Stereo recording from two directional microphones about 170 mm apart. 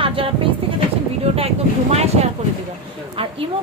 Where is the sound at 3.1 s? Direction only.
35° right (ahead or behind).